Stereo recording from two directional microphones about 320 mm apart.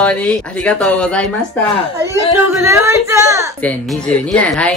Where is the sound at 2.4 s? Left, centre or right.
Centre.